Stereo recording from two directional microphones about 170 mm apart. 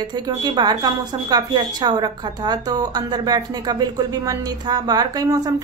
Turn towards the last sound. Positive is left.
turn(degrees=-20)  # may be behind; listen again after turning